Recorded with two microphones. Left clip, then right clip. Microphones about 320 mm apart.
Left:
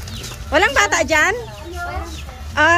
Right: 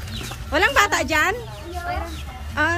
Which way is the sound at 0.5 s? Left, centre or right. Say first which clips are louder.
Left 3 dB; centre.